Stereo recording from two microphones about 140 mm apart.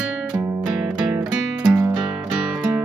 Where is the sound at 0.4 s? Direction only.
20° right (ahead or behind).